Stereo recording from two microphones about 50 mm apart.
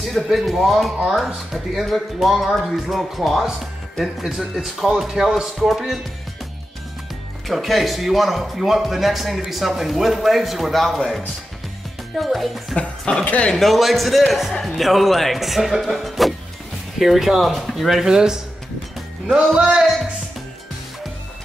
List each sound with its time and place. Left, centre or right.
0.1 s a man's voice: centre
7.4 s speech: centre
12.7 s a woman's voice: centre
13.2 s speech: left
13.5 s speech: centre
19.2 s music: centre